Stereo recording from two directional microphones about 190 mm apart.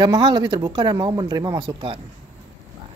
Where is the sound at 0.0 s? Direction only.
20° right (ahead or behind).